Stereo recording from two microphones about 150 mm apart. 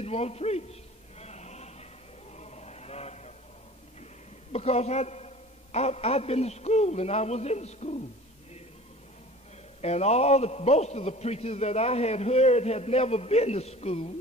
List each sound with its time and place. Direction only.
0.0 s a man's voice: 45° left (ahead or behind)
1.2 s chant: 45° left (ahead or behind)
4.5 s a man's voice: 45° left (ahead or behind)
9.8 s a man's voice: 45° left (ahead or behind)